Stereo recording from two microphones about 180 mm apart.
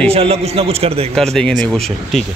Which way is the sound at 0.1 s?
35° right (ahead or behind).